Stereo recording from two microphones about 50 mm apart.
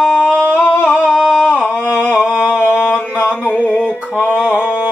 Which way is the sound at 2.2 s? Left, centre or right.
Left.